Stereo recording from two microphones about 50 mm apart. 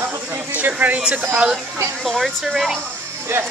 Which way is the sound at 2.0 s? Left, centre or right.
Centre.